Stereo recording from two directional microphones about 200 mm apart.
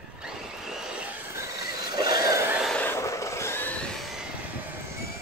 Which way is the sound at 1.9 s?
20° right (ahead or behind).